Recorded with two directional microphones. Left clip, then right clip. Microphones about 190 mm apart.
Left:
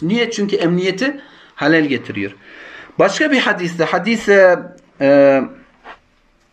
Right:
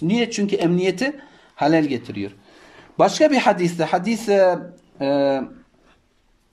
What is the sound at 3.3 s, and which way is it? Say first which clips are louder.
A man's voice: left 2 dB; 40° right (ahead or behind).